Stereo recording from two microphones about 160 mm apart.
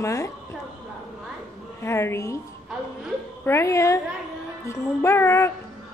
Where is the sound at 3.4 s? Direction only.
15° left (ahead or behind).